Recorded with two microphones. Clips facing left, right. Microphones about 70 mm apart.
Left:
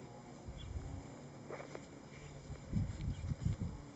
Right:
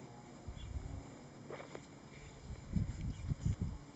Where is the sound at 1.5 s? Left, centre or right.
Centre.